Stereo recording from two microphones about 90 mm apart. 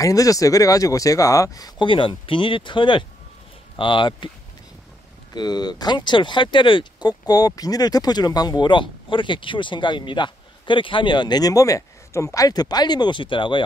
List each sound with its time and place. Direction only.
0.0 s speech: 40° left (ahead or behind)
1.8 s speech: 65° left (ahead or behind)
5.3 s speech: 50° left (ahead or behind); by 13.7 s 70° left (ahead or behind)